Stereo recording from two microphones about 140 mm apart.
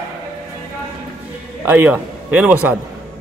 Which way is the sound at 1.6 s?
15° right (ahead or behind).